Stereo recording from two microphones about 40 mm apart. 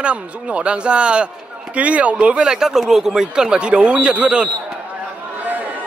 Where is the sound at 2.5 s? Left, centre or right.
Centre; by 4.5 s right.